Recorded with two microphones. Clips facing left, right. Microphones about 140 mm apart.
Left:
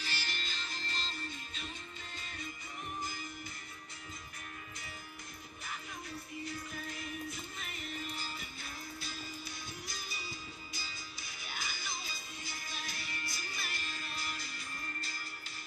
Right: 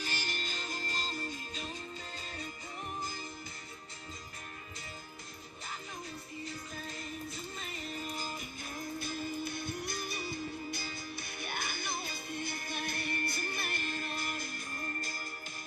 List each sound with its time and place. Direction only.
0.0 s music: 45° right (ahead or behind)
7.5 s music: 35° right (ahead or behind)